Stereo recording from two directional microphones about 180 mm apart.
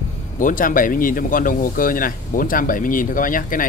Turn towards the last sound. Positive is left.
turn(degrees=50)  # may be behind; listen again after turning